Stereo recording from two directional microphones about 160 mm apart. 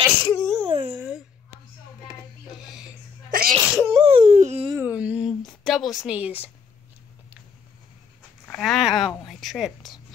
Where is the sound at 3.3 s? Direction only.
60° right (ahead or behind).